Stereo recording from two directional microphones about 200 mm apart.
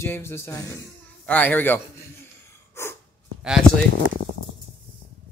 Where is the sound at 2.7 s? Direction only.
10° left (ahead or behind).